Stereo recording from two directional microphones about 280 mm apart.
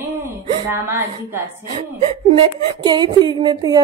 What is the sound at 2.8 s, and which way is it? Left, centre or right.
A woman's voice, centre.